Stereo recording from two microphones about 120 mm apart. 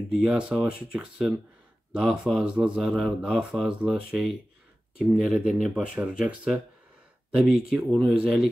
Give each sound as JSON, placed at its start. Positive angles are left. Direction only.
{"t": 0.1, "sound": "speech", "side_deg": -5}